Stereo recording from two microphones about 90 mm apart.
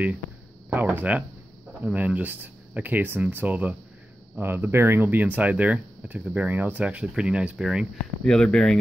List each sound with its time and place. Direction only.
0.7 s speech: 20° right (ahead or behind)
8.2 s speech: 10° left (ahead or behind)